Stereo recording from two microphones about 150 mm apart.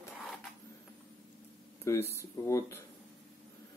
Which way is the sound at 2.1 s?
15° left (ahead or behind).